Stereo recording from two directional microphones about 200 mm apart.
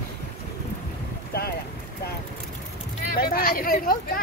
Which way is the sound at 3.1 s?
45° left (ahead or behind).